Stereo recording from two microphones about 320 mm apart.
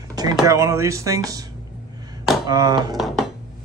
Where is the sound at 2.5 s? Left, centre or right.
Centre.